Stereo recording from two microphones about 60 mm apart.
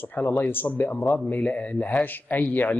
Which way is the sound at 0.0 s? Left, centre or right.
Left.